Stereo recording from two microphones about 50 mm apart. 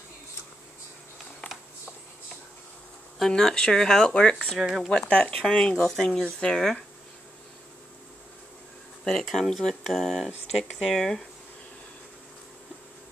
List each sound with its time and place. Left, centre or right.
3.2 s speech: centre
4.1 s speech: centre
4.6 s speech: centre
5.0 s speech: left
5.9 s speech: centre
9.0 s speech: centre